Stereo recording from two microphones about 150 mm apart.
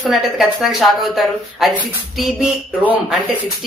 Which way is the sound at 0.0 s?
Centre (ahead or behind).